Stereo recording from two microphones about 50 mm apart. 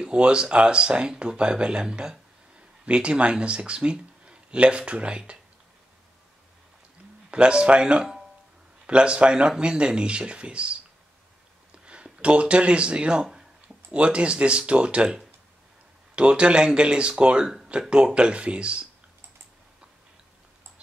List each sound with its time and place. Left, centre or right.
0.0 s speech: centre
7.2 s speech: right
11.8 s speech: right
16.2 s speech: right